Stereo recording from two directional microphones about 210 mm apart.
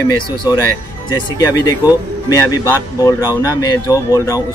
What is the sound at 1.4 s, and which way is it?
Speech, 15° left (ahead or behind).